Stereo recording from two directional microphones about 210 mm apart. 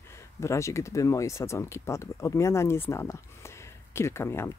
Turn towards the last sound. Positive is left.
turn(degrees=10)  # may be behind; listen again after turning